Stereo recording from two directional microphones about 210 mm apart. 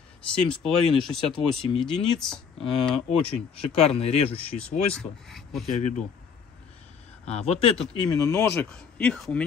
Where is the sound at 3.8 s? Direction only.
30° left (ahead or behind).